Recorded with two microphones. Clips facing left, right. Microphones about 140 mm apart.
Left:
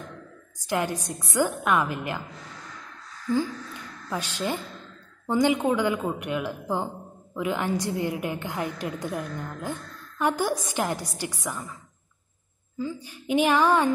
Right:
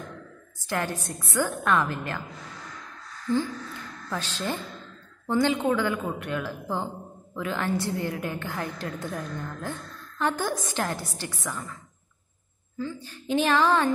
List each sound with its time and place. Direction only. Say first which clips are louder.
0.7 s a woman's voice: left 2 dB; 15° left (ahead or behind)
3.3 s a woman's voice: left 1 dB; 10° left (ahead or behind)
12.7 s a woman's voice: left 2 dB; 15° left (ahead or behind)